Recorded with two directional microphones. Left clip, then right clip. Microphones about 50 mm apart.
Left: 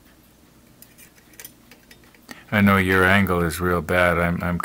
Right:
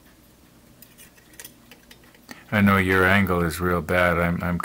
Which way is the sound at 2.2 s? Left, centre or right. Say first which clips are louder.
Left 2 dB; centre.